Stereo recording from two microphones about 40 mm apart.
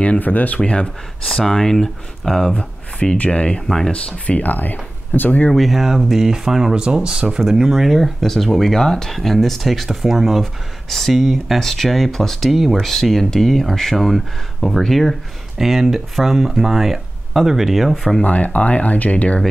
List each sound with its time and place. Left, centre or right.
0.2 s speech: left
0.6 s speech: left
1.2 s speech: centre
3.3 s speech: left
3.6 s speech: centre
3.9 s speech: left
4.4 s speech: left
5.5 s speech: centre
6.7 s speech: right
7.4 s speech: centre
7.7 s speech: centre
15.5 s speech: centre
18.2 s speech: left